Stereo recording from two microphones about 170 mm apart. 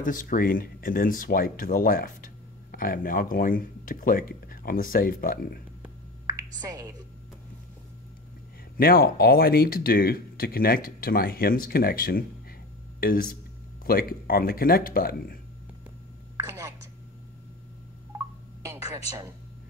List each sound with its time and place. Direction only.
0.0 s speech: 55° left (ahead or behind)
6.6 s a woman's voice: 20° right (ahead or behind)
8.7 s speech: 60° left (ahead or behind)
16.4 s a sound: 15° right (ahead or behind)
18.1 s telephone dialing: 20° right (ahead or behind)